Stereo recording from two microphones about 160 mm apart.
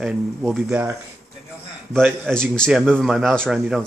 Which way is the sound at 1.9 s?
5° left (ahead or behind).